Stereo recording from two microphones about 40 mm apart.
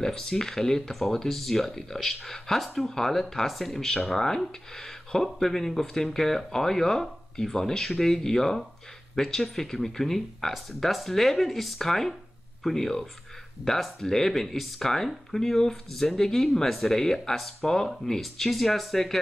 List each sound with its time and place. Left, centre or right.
0.0 s speech: centre